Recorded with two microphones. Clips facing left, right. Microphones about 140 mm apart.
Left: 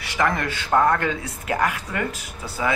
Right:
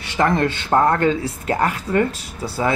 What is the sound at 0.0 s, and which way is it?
Speech, 25° right (ahead or behind).